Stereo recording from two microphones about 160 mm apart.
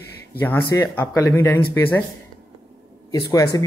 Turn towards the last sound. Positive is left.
turn(degrees=20)  # may be behind; listen again after turning